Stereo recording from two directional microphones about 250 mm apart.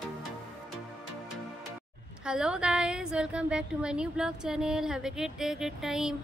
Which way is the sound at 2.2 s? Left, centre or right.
Centre.